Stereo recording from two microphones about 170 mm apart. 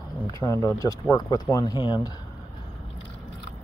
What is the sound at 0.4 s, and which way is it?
Speech, 20° left (ahead or behind).